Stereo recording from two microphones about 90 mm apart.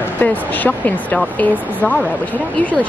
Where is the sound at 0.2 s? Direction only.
20° left (ahead or behind).